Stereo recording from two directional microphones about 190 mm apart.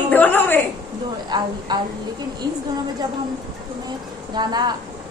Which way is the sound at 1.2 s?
20° right (ahead or behind).